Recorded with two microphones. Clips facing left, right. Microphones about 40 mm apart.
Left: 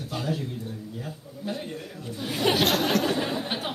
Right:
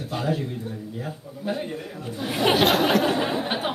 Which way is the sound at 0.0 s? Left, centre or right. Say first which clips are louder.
Right 4 dB; centre.